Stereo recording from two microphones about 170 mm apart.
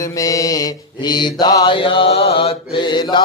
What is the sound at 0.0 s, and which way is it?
Mantra, 20° left (ahead or behind).